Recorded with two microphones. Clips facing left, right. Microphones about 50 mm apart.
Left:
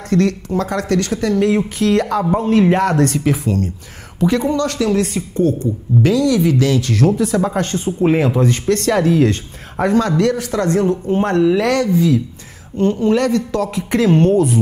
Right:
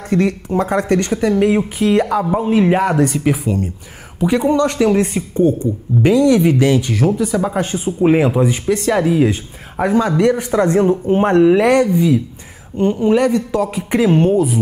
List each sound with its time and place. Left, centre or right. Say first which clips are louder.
0.1 s a man's voice: even; centre
6.9 s speech: left 1 dB; centre